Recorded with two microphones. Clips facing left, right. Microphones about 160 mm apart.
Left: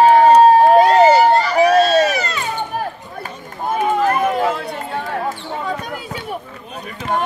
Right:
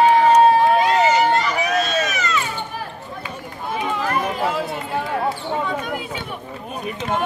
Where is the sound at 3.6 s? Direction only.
45° left (ahead or behind).